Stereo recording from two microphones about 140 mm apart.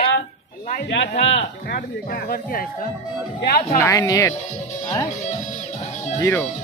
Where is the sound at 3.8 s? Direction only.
25° left (ahead or behind).